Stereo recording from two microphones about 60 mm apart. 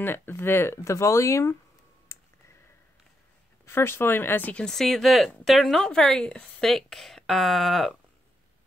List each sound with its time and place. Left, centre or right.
0.0 s speech: left
2.1 s clicking: left
3.6 s speech: left
4.6 s speech: centre
6.7 s speech: centre